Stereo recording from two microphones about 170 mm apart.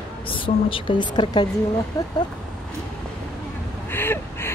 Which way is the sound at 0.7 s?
30° left (ahead or behind).